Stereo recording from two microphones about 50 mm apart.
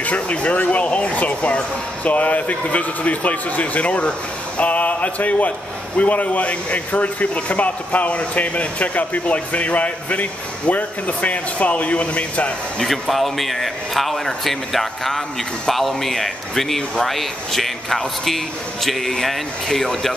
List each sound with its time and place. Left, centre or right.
0.0 s a man's voice: left
4.6 s a sound: left
5.9 s a man's voice: left
12.7 s a man's voice: centre